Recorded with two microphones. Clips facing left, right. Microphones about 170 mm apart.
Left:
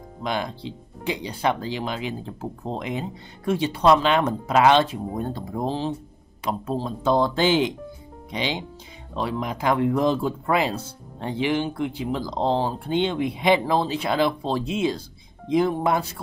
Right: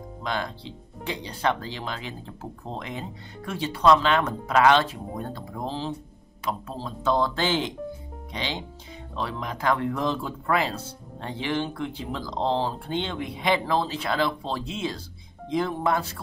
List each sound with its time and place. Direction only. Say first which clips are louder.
0.2 s speech: left 3 dB; 15° left (ahead or behind)